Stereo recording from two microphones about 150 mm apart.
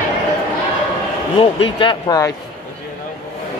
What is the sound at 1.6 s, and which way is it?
Speech, 35° left (ahead or behind).